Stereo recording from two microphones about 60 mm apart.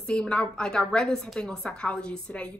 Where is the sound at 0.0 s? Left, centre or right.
Centre.